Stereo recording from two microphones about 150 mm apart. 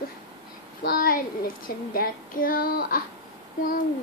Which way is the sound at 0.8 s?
70° left (ahead or behind).